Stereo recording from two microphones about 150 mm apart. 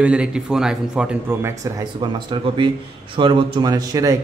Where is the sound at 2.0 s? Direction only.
30° right (ahead or behind).